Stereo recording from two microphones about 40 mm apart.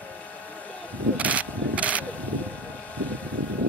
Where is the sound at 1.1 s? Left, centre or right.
Right.